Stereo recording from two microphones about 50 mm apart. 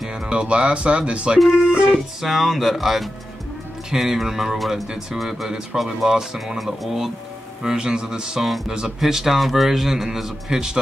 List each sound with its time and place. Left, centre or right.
0.3 s speech: right
1.4 s a man's voice: centre
7.6 s a man's voice: centre